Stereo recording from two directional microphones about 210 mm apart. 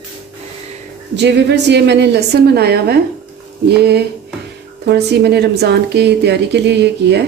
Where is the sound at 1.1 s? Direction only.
55° right (ahead or behind).